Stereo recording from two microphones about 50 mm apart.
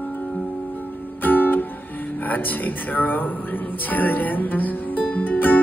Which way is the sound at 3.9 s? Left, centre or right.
Left.